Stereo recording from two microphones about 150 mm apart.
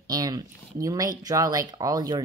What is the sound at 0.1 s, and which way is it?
Speech, 25° right (ahead or behind).